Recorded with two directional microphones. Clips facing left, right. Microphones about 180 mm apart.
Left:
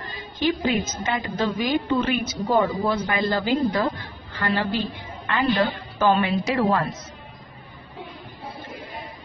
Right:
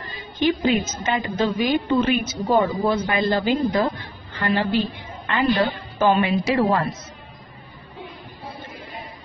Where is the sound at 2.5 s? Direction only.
20° right (ahead or behind).